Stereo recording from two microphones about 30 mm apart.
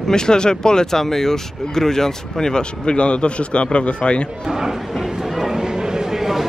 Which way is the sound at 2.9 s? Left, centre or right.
Left.